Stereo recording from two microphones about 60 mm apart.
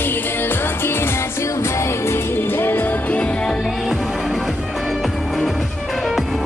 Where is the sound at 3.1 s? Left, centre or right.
Centre.